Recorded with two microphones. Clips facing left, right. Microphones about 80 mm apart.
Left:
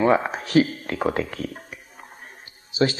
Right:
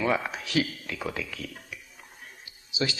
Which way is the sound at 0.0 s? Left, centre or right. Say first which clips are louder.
Left 8 dB; left.